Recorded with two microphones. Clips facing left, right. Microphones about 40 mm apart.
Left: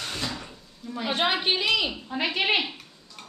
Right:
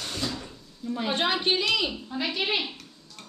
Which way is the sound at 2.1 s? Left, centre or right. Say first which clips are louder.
Left 4 dB; left.